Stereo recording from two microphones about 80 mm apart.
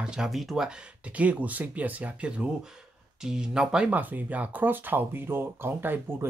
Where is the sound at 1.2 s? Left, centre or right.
Centre.